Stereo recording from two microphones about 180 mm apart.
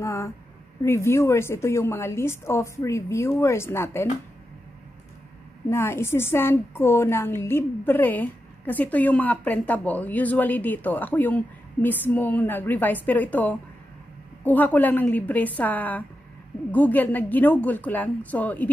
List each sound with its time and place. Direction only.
0.0 s a woman's voice: 15° left (ahead or behind)
5.7 s a woman's voice: 15° left (ahead or behind)